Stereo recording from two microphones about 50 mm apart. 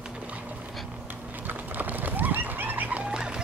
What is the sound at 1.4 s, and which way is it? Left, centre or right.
Bird, right.